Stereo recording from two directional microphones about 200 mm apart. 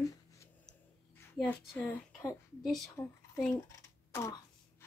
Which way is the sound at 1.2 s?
5° left (ahead or behind).